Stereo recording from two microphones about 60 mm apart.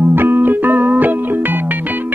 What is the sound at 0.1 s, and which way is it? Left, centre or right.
Music, right.